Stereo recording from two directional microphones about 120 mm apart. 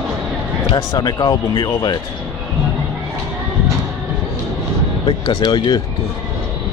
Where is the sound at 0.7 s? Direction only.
30° left (ahead or behind).